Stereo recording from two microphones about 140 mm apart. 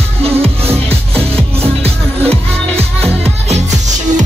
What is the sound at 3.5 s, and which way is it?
Music, 60° right (ahead or behind).